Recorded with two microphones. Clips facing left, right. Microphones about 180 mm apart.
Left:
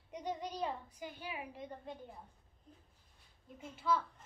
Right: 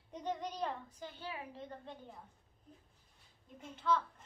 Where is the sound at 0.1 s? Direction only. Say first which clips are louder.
Right 1 dB; 10° left (ahead or behind).